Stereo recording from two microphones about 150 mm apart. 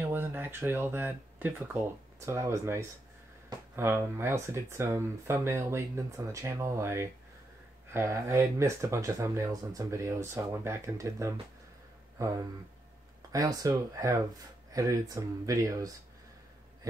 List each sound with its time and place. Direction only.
0.0 s speech: 15° right (ahead or behind)
13.3 s speech: 20° right (ahead or behind)